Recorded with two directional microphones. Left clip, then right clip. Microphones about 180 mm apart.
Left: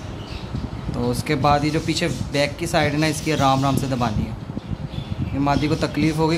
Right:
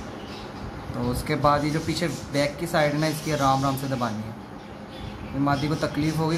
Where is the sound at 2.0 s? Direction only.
40° left (ahead or behind).